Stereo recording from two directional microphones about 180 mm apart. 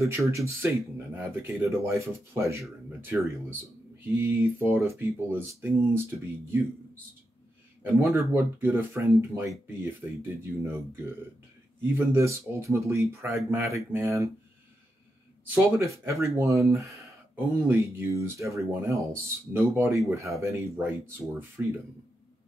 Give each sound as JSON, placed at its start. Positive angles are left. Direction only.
{"t": 0.0, "sound": "speech", "side_deg": -15}
{"t": 8.0, "sound": "speech", "side_deg": -10}
{"t": 15.5, "sound": "speech", "side_deg": -15}